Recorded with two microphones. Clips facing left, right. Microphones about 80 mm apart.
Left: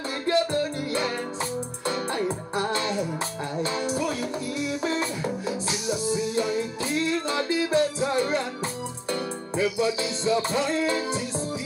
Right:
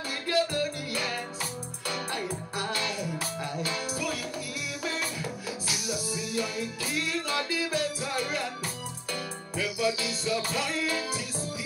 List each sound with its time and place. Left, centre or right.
0.3 s music: left